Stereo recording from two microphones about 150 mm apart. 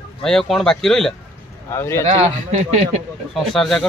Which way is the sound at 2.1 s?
55° right (ahead or behind).